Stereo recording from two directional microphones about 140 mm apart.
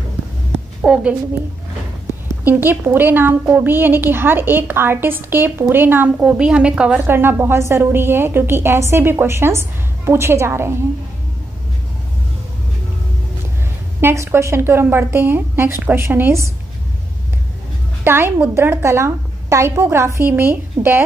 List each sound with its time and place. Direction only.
0.8 s a woman's voice: 10° right (ahead or behind)
2.4 s a woman's voice: 15° right (ahead or behind)
14.0 s a woman's voice: 20° right (ahead or behind)
18.0 s a woman's voice: 15° right (ahead or behind)